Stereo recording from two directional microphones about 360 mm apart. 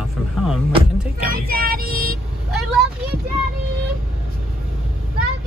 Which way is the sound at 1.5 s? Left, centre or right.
Right.